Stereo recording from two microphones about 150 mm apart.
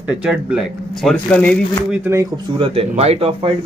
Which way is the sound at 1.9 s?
15° right (ahead or behind).